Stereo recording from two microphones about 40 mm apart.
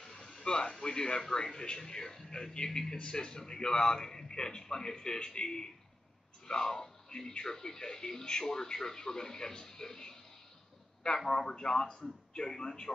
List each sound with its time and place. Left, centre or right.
0.0 s a man's voice: centre
11.2 s speech: centre